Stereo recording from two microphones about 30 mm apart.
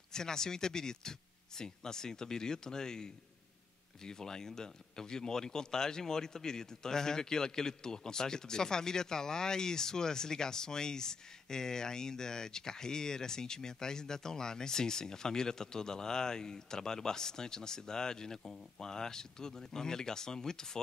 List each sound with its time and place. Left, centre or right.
0.1 s speech: left